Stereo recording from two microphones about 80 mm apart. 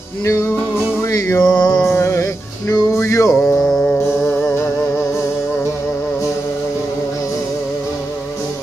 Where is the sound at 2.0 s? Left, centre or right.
Left.